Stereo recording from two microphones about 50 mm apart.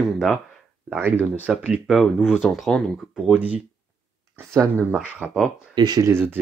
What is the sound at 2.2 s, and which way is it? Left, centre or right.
Speech, centre.